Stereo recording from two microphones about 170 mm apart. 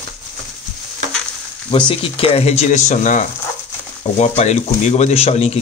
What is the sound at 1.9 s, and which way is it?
Speech, 35° left (ahead or behind).